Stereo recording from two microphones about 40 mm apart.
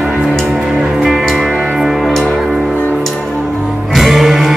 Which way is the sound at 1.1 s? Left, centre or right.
Centre.